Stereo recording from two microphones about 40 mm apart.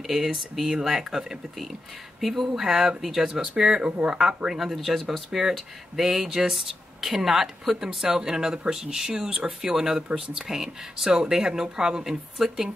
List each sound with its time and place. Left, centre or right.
0.0 s speech: centre
3.9 s speech: right
4.5 s speech: centre
4.7 s speech: centre